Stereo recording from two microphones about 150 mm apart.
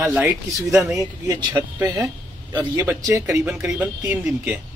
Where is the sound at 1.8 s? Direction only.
20° right (ahead or behind).